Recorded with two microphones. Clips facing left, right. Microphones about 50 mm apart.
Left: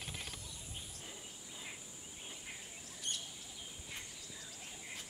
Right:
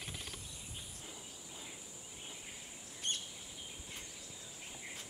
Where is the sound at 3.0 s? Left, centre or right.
Right.